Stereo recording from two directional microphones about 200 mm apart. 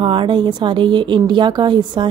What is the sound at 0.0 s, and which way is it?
A woman's voice, 25° right (ahead or behind).